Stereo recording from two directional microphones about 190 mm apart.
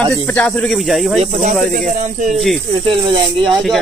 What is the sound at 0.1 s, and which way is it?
Speech, 10° left (ahead or behind).